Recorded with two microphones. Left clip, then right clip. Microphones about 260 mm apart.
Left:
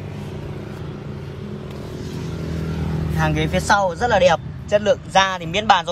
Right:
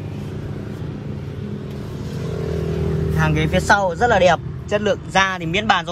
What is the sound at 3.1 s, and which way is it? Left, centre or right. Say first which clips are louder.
Speech: even; centre.